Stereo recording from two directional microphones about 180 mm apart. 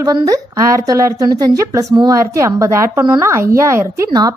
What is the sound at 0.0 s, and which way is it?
Speech, 20° right (ahead or behind).